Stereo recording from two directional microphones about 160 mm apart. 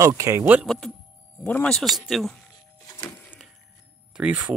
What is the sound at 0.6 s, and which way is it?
Speech, centre (ahead or behind).